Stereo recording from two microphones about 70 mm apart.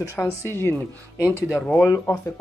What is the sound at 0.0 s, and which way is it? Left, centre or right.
Speech, left.